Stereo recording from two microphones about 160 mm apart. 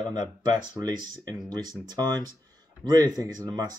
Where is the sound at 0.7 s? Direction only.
25° right (ahead or behind).